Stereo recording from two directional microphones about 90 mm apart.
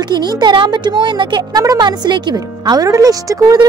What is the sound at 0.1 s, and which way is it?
A woman's voice, 55° right (ahead or behind).